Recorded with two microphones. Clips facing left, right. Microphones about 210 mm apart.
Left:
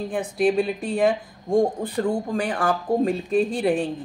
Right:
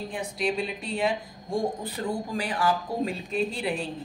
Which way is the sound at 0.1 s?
50° left (ahead or behind).